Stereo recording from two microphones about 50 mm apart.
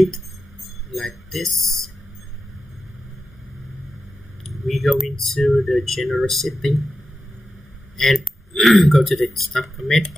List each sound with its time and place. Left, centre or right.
0.9 s speech: centre
4.6 s speech: centre
8.0 s speech: centre